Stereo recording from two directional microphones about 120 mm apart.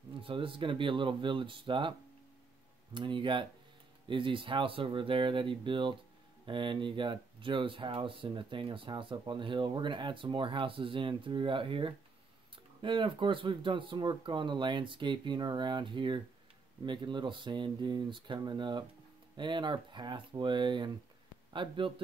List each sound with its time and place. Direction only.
0.2 s speech: 45° right (ahead or behind)